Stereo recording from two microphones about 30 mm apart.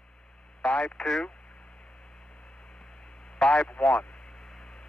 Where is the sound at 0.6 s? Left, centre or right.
Left.